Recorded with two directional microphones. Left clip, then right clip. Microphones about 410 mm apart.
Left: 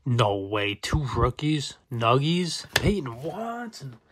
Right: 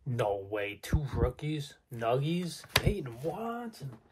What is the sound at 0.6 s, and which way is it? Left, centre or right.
Speech, centre.